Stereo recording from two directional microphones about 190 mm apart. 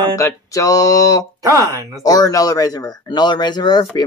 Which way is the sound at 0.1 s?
15° left (ahead or behind).